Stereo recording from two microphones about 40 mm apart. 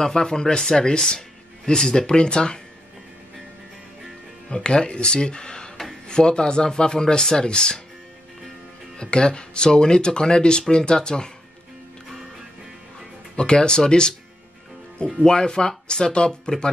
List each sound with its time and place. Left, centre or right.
0.0 s speech: centre
4.5 s speech: left
8.9 s speech: left
13.4 s speech: left
15.2 s speech: centre